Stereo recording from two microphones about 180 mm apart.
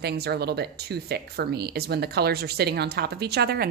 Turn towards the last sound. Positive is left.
turn(degrees=-65)  # may be behind; listen again after turning